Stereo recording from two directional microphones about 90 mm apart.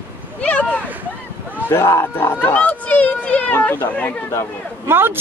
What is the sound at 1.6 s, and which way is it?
Speech, 30° left (ahead or behind).